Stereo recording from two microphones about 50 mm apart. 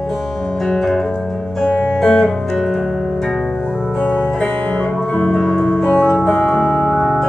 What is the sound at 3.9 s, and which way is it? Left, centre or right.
Music, left.